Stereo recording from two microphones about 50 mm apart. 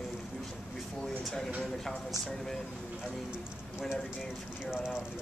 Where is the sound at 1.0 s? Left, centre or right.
Centre.